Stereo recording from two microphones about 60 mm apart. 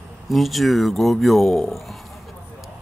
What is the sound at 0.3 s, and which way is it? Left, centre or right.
Speech, centre.